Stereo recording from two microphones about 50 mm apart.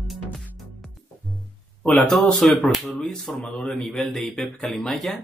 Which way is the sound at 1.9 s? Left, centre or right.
Centre.